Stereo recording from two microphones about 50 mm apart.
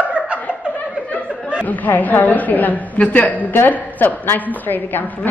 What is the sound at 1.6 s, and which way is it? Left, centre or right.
A woman's voice, left.